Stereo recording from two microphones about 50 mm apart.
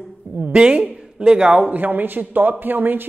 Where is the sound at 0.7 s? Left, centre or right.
Right.